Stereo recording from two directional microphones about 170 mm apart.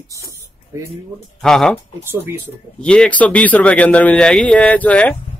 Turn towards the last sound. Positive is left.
turn(degrees=10)  # may be behind; listen again after turning